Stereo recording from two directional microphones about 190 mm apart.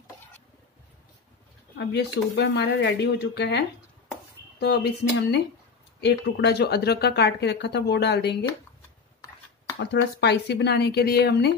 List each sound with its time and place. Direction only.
1.8 s speech: 60° left (ahead or behind)
9.8 s speech: 60° left (ahead or behind)